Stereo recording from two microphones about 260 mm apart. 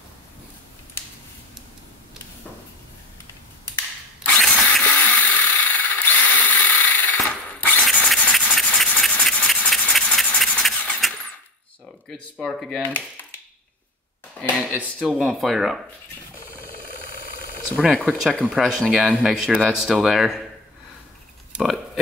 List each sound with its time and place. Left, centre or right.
4.2 s mechanisms: centre
12.1 s speech: centre
14.8 s speech: centre
16.6 s vehicle: left
17.7 s speech: centre
21.5 s a sound: centre